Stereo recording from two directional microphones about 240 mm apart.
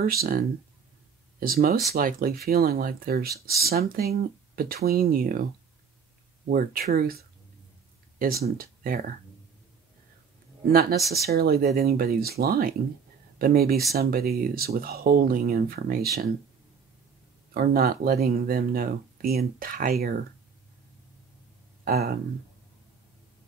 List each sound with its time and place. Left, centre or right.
0.0 s speech: right
6.5 s speech: right
10.7 s speech: right
17.6 s speech: right
21.8 s speech: right